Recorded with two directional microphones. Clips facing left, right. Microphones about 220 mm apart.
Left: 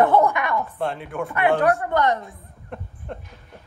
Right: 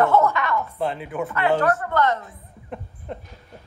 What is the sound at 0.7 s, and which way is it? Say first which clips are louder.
Speech: right 1 dB; centre (ahead or behind).